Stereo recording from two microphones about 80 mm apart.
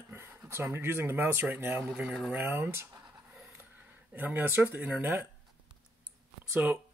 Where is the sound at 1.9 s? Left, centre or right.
Centre.